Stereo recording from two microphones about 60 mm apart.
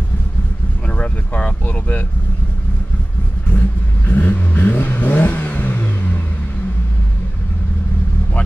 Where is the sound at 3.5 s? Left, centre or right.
Left.